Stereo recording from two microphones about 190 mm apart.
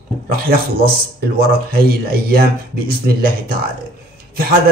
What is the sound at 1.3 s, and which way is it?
Speech, 50° right (ahead or behind).